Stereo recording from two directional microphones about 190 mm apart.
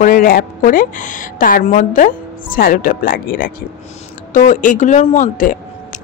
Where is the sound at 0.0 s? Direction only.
45° left (ahead or behind).